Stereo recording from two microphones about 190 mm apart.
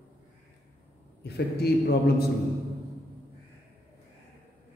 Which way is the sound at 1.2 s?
60° left (ahead or behind).